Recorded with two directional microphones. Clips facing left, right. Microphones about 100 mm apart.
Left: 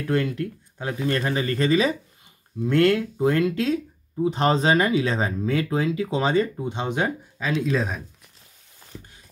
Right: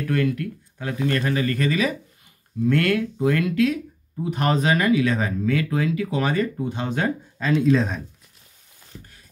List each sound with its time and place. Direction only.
0.1 s speech: 25° left (ahead or behind)
7.6 s speech: 5° left (ahead or behind)